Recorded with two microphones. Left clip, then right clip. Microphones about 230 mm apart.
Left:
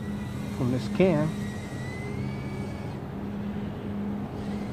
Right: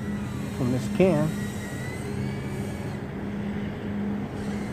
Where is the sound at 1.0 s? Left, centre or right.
Centre.